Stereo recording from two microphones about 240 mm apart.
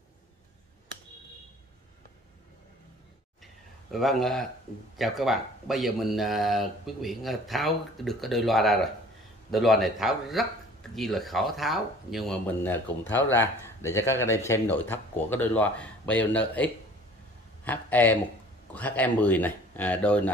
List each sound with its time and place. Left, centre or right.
3.9 s speech: centre